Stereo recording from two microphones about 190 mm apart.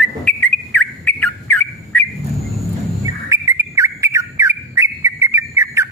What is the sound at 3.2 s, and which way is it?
Bird, 15° right (ahead or behind).